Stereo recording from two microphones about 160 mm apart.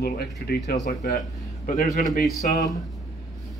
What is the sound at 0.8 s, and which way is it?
A man's voice, 55° left (ahead or behind).